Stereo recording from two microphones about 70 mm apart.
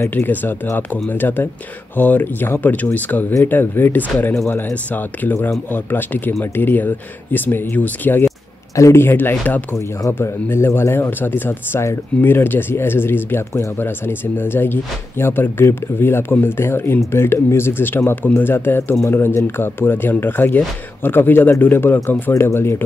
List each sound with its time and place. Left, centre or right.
0.1 s speech: left
8.7 s speech: left
9.0 s speech: left